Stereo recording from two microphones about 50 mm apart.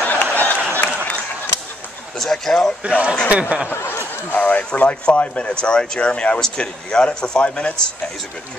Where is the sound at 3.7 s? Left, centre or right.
Left.